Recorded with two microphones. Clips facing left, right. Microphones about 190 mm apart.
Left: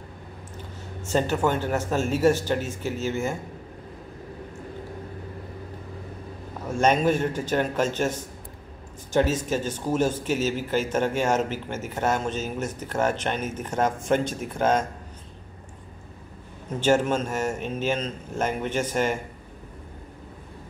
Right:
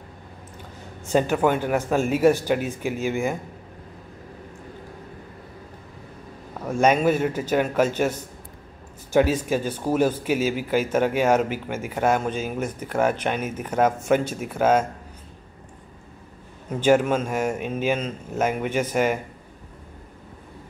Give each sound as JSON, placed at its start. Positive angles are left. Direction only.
{"t": 1.0, "sound": "speech", "side_deg": -10}
{"t": 6.7, "sound": "speech", "side_deg": -10}
{"t": 9.1, "sound": "speech", "side_deg": -10}
{"t": 16.8, "sound": "speech", "side_deg": -10}